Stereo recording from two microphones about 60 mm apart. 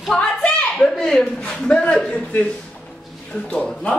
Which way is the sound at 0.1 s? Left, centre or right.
Centre.